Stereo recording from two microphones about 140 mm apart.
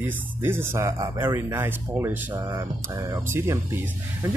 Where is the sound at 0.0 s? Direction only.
15° right (ahead or behind).